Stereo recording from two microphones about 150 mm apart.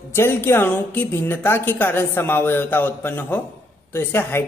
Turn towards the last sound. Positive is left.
turn(degrees=15)  # may be behind; listen again after turning